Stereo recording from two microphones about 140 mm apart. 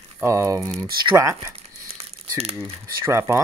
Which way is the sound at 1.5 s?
45° right (ahead or behind).